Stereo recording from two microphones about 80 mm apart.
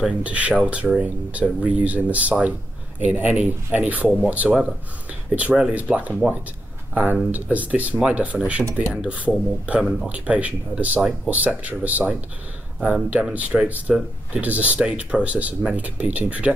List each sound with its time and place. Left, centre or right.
0.2 s speech: centre
9.3 s speech: centre
10.0 s speech: centre